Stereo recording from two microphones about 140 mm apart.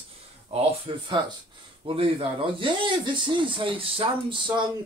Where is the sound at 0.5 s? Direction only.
45° right (ahead or behind).